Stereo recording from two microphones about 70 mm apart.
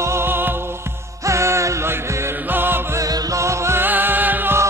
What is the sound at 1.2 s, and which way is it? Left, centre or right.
Music, right.